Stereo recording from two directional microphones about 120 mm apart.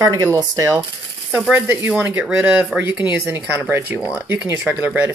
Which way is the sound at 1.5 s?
15° right (ahead or behind).